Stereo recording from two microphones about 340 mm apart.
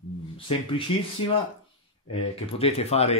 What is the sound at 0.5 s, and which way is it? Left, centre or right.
Speech, centre.